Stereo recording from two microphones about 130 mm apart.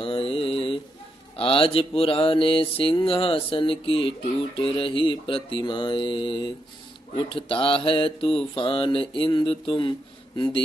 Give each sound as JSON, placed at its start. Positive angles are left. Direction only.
{"t": 0.0, "sound": "mantra", "side_deg": 45}